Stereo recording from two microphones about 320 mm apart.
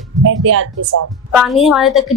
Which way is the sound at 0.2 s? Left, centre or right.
Right.